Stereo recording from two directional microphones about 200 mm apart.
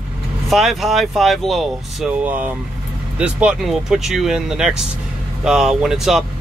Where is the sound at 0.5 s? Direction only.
Centre (ahead or behind).